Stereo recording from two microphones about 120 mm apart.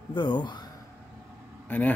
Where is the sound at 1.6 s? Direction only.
15° left (ahead or behind).